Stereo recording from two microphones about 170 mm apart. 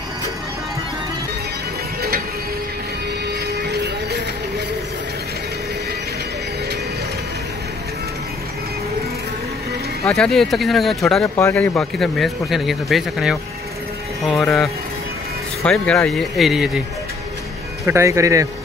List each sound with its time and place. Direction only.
3.6 s music: 75° right (ahead or behind)
10.0 s speech: 5° left (ahead or behind)
17.8 s speech: 15° right (ahead or behind)